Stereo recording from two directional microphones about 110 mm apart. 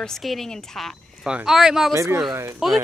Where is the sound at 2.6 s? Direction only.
5° right (ahead or behind).